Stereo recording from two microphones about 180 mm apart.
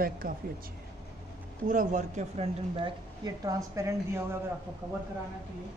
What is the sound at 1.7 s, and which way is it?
Speech, 45° right (ahead or behind).